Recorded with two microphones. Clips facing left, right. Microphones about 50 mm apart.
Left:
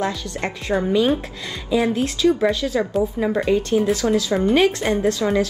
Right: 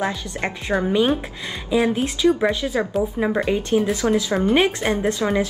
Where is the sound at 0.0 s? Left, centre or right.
Centre.